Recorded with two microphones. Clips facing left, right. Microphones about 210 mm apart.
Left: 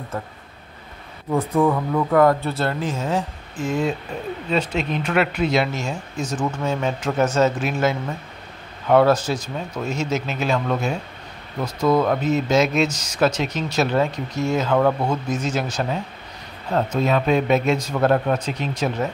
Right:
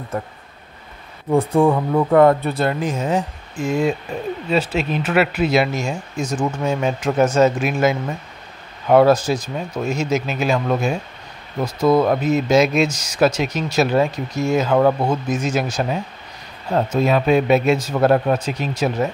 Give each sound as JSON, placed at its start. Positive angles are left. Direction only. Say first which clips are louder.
{"t": 1.3, "sound": "speech", "louder": "right 4 dB", "side_deg": -30}